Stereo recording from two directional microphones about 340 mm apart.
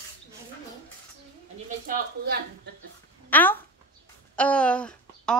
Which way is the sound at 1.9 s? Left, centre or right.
Right.